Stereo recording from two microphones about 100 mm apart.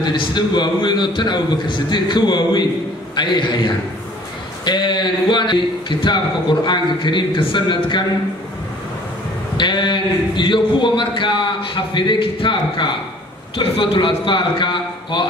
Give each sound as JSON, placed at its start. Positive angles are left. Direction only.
{"t": 0.0, "sound": "speech", "side_deg": 50}
{"t": 9.6, "sound": "a man's voice", "side_deg": 50}